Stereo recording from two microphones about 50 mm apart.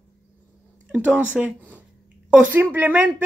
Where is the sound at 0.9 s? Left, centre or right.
Right.